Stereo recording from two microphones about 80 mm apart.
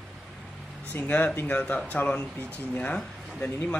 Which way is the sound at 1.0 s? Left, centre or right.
Centre.